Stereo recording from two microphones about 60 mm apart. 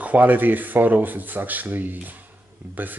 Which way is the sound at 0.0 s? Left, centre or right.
Right.